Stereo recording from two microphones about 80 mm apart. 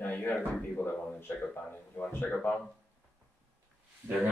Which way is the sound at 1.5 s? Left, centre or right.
Left.